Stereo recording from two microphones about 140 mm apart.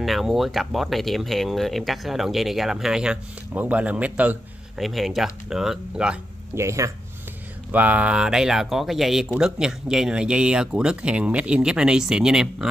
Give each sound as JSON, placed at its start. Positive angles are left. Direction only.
{"t": 0.0, "sound": "speech", "side_deg": 0}
{"t": 6.5, "sound": "speech", "side_deg": -20}